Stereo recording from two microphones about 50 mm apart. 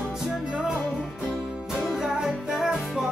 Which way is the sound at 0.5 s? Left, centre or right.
Centre.